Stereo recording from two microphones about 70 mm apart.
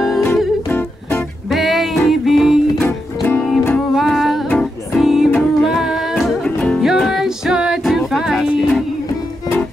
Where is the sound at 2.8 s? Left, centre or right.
Left.